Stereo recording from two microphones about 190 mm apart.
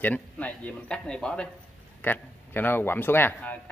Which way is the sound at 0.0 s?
10° left (ahead or behind).